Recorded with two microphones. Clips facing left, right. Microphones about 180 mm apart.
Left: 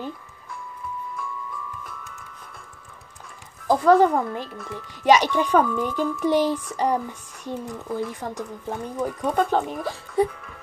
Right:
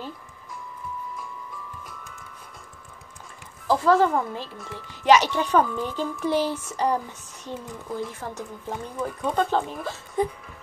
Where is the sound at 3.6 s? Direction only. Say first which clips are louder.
Left 3 dB; 15° left (ahead or behind).